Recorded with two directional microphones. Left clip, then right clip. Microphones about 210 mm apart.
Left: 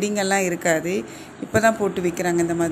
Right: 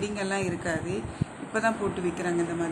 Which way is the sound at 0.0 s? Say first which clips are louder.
Left 9 dB; 30° left (ahead or behind).